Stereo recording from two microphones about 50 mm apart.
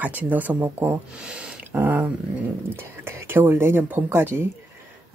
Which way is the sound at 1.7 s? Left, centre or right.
Right.